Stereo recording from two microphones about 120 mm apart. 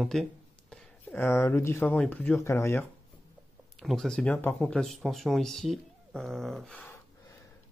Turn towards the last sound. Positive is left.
turn(degrees=0)  # may be behind; listen again after turning